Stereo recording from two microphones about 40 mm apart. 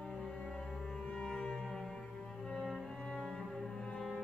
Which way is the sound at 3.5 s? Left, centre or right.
Centre.